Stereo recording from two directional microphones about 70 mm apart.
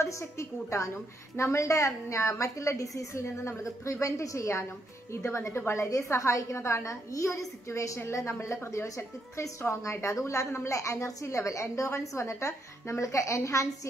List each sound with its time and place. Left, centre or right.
0.0 s a woman's voice: left